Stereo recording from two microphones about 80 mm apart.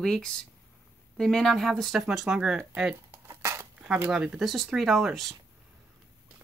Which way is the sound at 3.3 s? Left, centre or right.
Right.